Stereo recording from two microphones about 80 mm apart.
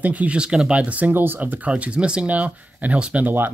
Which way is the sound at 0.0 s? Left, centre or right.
Centre.